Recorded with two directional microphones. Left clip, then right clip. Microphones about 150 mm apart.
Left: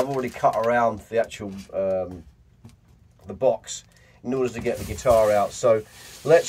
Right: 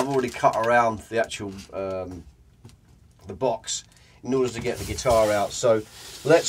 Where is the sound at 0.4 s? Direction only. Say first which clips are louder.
Even; 20° right (ahead or behind).